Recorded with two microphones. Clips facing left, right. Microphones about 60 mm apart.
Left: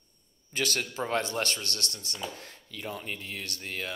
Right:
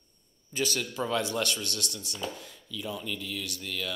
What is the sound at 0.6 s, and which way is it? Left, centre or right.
A man's voice, left.